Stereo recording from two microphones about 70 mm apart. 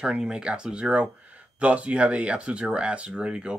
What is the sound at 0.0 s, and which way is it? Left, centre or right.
Speech, centre.